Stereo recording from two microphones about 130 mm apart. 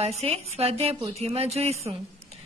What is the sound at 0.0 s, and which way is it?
A woman's voice, 55° right (ahead or behind).